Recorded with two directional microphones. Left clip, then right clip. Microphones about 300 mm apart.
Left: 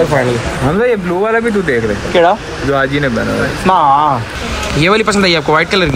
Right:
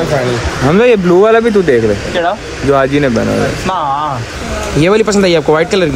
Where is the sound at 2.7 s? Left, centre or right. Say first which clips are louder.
Right 2 dB; centre.